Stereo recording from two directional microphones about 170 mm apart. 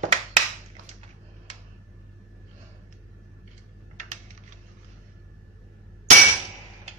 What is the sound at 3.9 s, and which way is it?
Typing, 45° right (ahead or behind).